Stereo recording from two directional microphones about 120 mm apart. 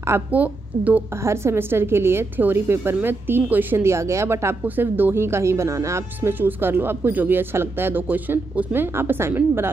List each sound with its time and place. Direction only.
0.0 s a woman's voice: 15° right (ahead or behind)